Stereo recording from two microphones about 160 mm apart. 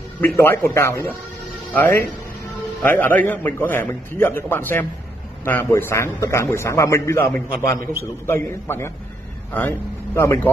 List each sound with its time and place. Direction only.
0.4 s a man's voice: 15° left (ahead or behind)